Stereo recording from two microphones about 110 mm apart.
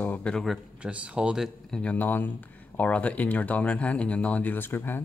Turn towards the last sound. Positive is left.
turn(degrees=20)  # may be behind; listen again after turning